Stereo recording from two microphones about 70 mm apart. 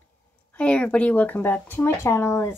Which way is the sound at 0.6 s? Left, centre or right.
Centre.